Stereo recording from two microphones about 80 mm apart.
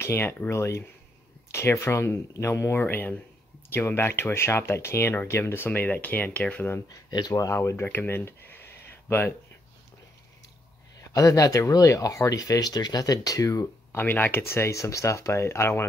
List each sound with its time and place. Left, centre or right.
0.0 s speech: left
6.9 s speech: left
7.3 s speech: left
11.0 s speech: left
13.9 s speech: left